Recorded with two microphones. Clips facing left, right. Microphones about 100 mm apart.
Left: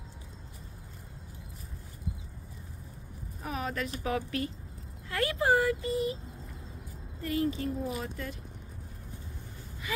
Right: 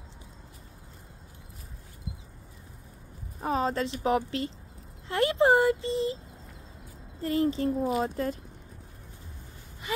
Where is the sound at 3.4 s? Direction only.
30° right (ahead or behind).